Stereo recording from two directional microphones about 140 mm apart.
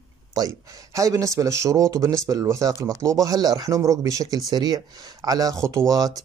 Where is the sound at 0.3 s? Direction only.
25° right (ahead or behind).